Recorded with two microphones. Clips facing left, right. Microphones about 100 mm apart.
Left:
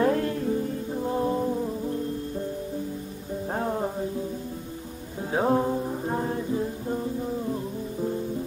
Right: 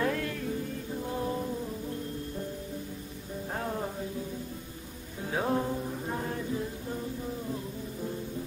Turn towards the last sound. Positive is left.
turn(degrees=30)  # may be behind; listen again after turning